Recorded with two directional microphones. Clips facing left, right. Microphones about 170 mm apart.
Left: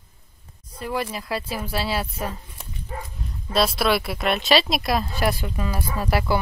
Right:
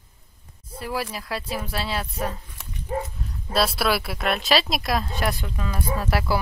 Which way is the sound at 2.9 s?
30° right (ahead or behind).